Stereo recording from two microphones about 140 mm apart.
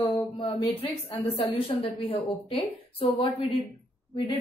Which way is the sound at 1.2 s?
45° left (ahead or behind).